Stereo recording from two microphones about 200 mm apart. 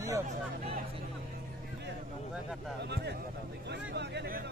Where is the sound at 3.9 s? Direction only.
60° right (ahead or behind).